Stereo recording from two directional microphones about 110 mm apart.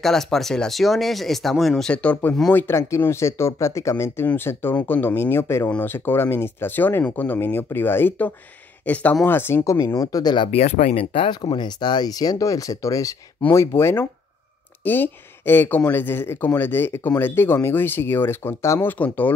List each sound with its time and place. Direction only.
0.0 s speech: 5° left (ahead or behind)
2.5 s speech: 25° left (ahead or behind); by 10.5 s 40° left (ahead or behind)
10.5 s speech: 70° left (ahead or behind); by 19.3 s 15° left (ahead or behind)